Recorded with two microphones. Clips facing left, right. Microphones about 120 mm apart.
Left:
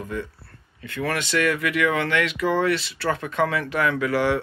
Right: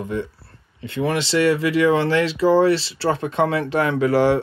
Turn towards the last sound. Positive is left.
turn(degrees=-30)  # may be behind; listen again after turning